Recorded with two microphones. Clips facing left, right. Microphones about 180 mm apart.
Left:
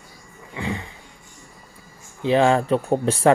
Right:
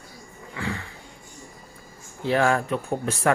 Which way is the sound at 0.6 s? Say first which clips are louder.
Left 3 dB; 20° left (ahead or behind).